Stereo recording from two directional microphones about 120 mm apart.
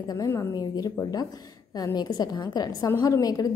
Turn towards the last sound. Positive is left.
turn(degrees=30)  # may be behind; listen again after turning